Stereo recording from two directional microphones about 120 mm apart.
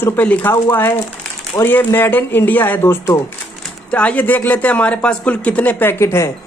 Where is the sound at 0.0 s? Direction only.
15° left (ahead or behind).